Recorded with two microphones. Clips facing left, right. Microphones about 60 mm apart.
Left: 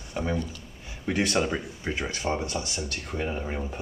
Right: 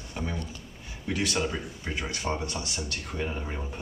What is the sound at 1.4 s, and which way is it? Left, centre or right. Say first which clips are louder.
Speech: left 3 dB; centre.